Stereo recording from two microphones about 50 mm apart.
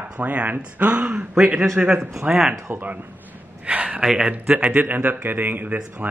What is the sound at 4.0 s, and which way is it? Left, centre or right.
Speech, centre.